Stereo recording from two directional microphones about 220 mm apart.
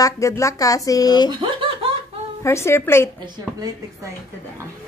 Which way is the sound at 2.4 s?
10° left (ahead or behind).